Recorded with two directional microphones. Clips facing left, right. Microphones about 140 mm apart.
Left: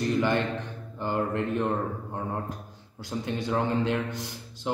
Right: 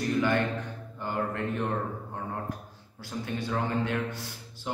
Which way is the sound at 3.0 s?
20° left (ahead or behind).